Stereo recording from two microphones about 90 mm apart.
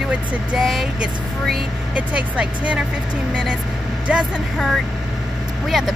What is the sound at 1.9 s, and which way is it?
Speech, 15° right (ahead or behind).